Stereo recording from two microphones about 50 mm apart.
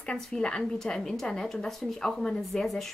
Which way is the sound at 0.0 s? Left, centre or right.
Centre.